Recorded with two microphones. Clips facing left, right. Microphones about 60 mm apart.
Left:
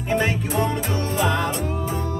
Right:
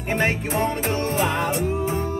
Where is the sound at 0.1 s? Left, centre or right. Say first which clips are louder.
Even; right.